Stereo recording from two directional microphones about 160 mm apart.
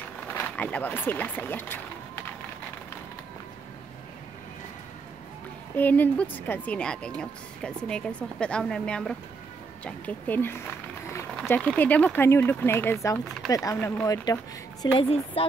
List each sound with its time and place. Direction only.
0.3 s speech: 10° left (ahead or behind)
5.8 s speech: 10° left (ahead or behind)
15.4 s speech: 35° left (ahead or behind)